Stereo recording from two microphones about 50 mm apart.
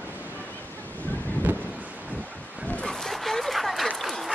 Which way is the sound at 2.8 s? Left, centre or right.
Centre.